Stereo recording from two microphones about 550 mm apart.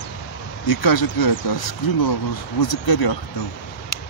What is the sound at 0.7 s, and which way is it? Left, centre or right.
Speech, left.